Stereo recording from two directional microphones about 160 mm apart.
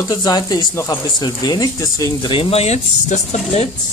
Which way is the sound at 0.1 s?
25° left (ahead or behind).